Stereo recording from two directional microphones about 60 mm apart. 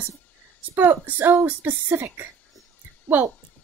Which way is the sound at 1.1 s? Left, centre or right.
Right.